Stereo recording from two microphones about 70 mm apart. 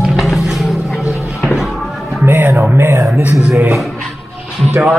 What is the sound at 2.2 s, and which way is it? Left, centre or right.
Music, right.